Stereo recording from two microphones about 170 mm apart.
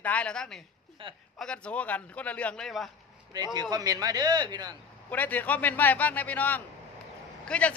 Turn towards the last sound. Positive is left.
turn(degrees=10)  # may be behind; listen again after turning